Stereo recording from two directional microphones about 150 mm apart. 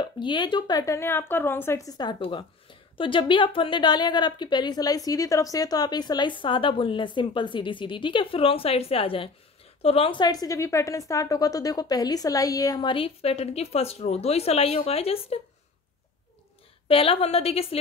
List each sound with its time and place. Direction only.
0.0 s a woman's voice: 30° left (ahead or behind)
16.8 s speech: 40° left (ahead or behind)